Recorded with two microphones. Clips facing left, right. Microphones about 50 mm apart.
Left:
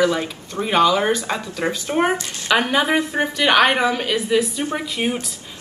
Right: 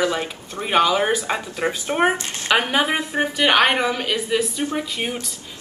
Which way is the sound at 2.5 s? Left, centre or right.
Centre.